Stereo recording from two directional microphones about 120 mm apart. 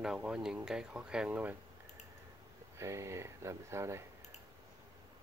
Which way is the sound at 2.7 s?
25° right (ahead or behind).